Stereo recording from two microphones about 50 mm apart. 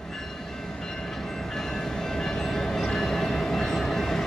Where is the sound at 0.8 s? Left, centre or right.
Centre.